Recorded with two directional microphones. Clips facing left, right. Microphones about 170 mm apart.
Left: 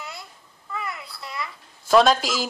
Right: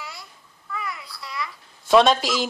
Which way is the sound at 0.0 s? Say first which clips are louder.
Left 1 dB; 25° left (ahead or behind).